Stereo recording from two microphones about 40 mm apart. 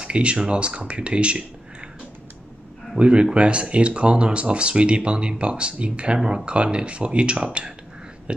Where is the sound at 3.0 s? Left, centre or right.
Right.